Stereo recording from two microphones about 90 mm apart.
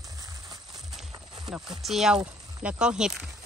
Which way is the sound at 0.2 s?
40° right (ahead or behind).